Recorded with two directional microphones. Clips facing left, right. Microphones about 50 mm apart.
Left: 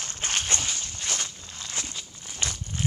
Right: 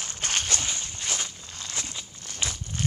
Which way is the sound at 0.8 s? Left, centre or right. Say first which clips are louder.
Even; centre.